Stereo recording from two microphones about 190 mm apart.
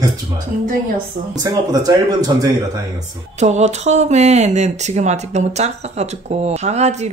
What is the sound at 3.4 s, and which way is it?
Speech, 35° right (ahead or behind).